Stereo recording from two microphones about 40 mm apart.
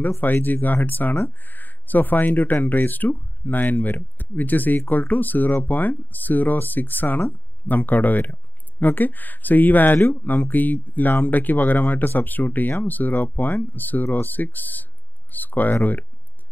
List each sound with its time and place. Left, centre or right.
0.2 s speech: left